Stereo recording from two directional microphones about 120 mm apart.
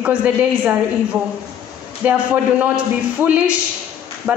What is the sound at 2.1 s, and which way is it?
A woman's voice, 10° right (ahead or behind).